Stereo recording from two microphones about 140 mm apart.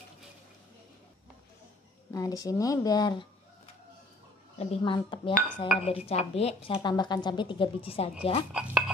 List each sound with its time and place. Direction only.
2.1 s speech: 25° left (ahead or behind)
4.6 s speech: 50° left (ahead or behind)
4.9 s a woman's voice: 35° left (ahead or behind)
5.9 s speech: 45° left (ahead or behind)
6.8 s a woman's voice: 30° left (ahead or behind)
8.5 s a sound: 5° right (ahead or behind)